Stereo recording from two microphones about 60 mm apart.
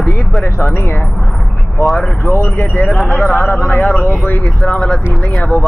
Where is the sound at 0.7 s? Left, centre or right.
Left.